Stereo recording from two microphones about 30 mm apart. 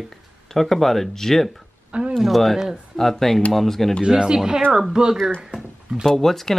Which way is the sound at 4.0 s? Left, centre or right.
Right.